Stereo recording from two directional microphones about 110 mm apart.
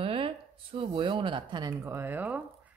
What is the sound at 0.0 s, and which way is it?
Speech, 55° right (ahead or behind).